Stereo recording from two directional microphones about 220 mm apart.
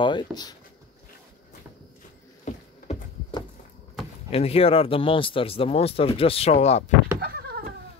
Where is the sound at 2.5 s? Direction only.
35° left (ahead or behind).